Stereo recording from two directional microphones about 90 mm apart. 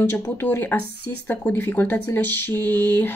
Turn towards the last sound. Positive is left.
turn(degrees=25)  # may be behind; listen again after turning